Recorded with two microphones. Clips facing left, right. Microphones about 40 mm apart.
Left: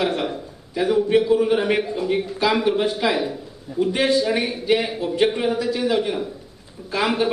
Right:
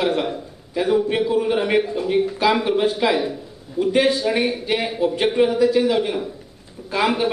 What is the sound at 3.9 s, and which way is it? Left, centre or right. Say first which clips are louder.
A man's voice: right 2 dB; centre.